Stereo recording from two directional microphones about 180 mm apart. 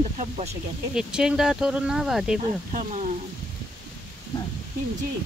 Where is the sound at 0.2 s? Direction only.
35° right (ahead or behind).